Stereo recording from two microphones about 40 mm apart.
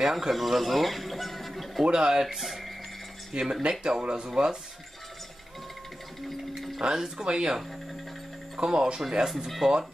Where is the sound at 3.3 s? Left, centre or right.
Right.